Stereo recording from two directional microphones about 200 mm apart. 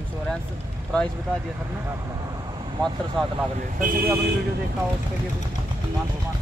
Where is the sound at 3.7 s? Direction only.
45° right (ahead or behind).